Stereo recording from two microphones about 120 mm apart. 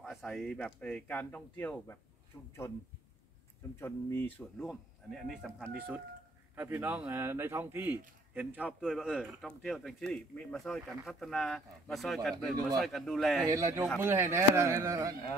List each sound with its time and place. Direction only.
0.0 s speech: centre (ahead or behind); by 2.5 s 25° left (ahead or behind)
3.8 s speech: 20° left (ahead or behind)
4.6 s speech: 5° left (ahead or behind)
6.5 s a man's voice: 15° right (ahead or behind); by 13.5 s centre (ahead or behind)
13.5 s speech: 25° right (ahead or behind)